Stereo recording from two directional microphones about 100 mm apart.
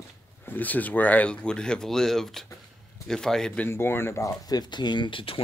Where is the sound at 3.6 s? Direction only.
20° left (ahead or behind); by 5.4 s 60° left (ahead or behind).